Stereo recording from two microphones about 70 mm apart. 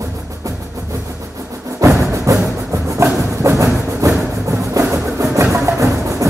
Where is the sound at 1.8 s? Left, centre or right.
Right.